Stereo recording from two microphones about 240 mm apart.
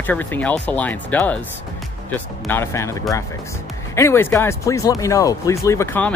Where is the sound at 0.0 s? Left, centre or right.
Centre.